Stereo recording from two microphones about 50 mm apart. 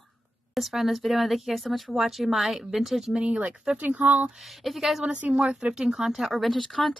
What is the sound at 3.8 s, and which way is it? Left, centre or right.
Speech, right.